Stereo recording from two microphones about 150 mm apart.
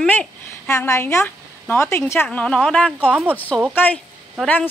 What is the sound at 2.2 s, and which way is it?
A man's voice, 5° left (ahead or behind).